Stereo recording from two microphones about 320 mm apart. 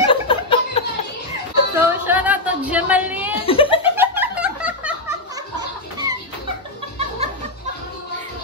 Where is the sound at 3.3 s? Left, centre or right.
Centre.